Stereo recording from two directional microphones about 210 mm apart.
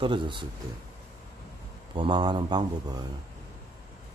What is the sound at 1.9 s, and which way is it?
Speech, 25° right (ahead or behind).